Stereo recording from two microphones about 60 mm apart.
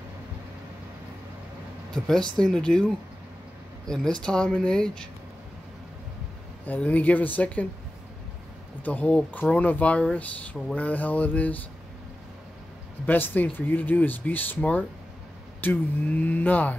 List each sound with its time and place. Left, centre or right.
1.9 s speech: centre
6.6 s speech: left
8.8 s speech: left
13.0 s speech: left